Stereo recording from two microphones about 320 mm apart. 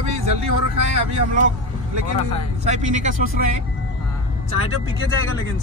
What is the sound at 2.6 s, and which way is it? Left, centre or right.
Speech, right.